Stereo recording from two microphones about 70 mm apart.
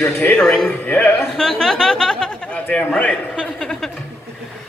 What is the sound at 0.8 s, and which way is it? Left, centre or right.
Speech, left.